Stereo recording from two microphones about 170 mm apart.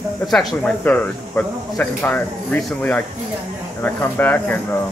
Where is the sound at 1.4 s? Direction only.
20° left (ahead or behind).